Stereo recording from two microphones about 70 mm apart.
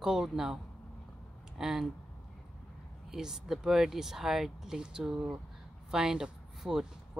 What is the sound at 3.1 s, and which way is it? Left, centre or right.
Speech, centre.